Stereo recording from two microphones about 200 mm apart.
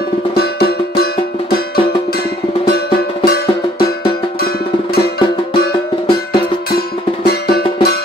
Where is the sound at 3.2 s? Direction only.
50° left (ahead or behind).